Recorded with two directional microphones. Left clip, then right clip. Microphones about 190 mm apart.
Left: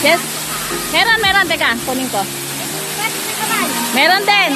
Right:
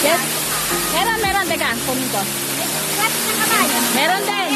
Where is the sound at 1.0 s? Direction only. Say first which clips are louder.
Left 7 dB; 45° left (ahead or behind).